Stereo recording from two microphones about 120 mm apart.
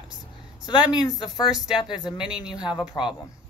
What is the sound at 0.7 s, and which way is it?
Speech, 35° left (ahead or behind).